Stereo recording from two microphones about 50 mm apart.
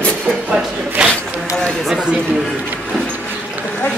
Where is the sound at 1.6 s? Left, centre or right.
Centre.